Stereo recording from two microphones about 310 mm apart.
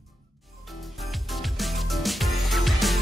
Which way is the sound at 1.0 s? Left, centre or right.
Centre.